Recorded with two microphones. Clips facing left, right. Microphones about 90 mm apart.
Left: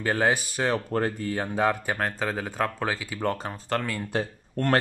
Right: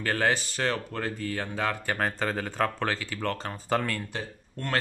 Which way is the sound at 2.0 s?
Centre (ahead or behind).